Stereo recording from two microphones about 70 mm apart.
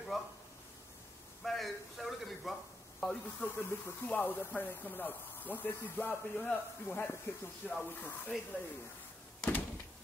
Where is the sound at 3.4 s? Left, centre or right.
Left.